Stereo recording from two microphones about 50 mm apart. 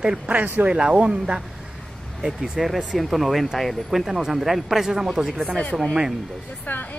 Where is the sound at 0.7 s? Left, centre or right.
Centre.